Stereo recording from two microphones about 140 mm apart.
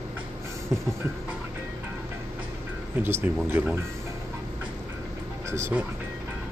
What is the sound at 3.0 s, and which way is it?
Speech, 15° right (ahead or behind).